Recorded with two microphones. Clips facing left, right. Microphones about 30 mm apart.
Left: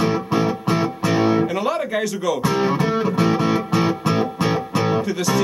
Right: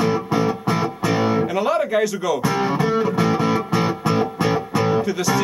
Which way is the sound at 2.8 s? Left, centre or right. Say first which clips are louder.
Even; left.